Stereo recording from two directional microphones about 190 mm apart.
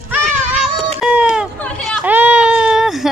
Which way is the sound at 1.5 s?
5° left (ahead or behind).